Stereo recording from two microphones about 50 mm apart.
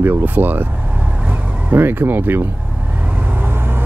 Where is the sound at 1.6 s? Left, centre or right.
Right.